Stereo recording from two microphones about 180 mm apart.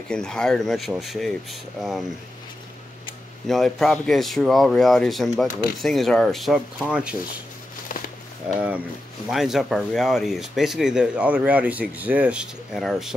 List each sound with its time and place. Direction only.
0.1 s speech: 5° left (ahead or behind)
3.4 s speech: centre (ahead or behind)
7.9 s a sound: 50° left (ahead or behind)
8.5 s speech: 10° right (ahead or behind)